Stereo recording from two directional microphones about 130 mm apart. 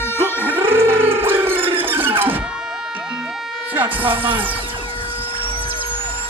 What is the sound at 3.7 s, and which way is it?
Music, 15° right (ahead or behind).